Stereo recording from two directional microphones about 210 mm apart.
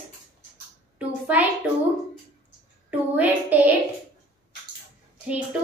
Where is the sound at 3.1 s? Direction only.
5° right (ahead or behind).